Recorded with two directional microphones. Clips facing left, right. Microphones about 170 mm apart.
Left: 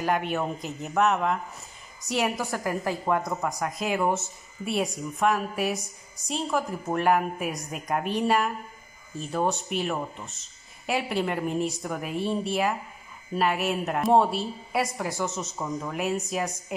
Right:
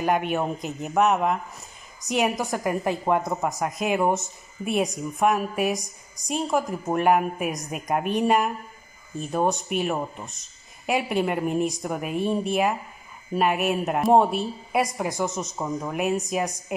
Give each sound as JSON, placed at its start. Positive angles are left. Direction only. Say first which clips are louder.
{"t": 0.0, "sound": "a woman's voice", "louder": "right 3 dB", "side_deg": -15}
{"t": 15.5, "sound": "a woman's voice", "louder": "right 3 dB", "side_deg": -30}
{"t": 15.9, "sound": "a woman's voice", "louder": "right 4 dB", "side_deg": -15}